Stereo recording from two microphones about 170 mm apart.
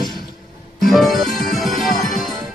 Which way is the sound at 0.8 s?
Centre (ahead or behind).